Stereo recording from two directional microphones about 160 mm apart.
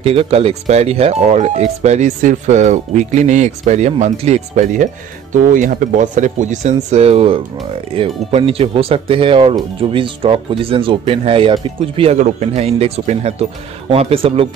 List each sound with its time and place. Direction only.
0.0 s speech: 40° right (ahead or behind)
12.2 s speech: 45° right (ahead or behind)